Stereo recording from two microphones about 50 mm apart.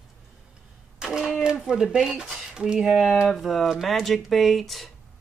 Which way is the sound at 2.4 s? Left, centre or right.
Centre.